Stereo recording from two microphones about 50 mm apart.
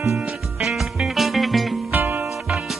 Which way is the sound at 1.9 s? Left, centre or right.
Right.